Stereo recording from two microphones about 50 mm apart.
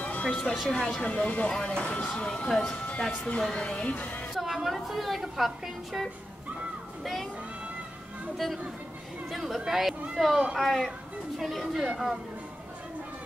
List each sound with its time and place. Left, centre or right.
0.0 s music: left
0.3 s speech: centre
1.0 s speech: left
4.3 s a woman's voice: centre
7.0 s speech: centre
9.3 s speech: centre